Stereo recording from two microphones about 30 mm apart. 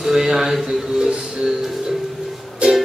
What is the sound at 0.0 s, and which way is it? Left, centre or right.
Speech, centre.